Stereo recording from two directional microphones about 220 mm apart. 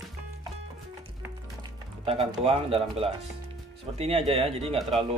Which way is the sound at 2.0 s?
25° right (ahead or behind).